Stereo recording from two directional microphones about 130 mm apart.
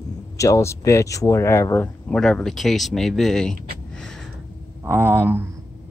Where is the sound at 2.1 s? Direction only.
5° left (ahead or behind).